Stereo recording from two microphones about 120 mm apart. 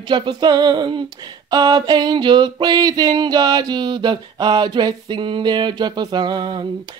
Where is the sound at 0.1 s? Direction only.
40° right (ahead or behind).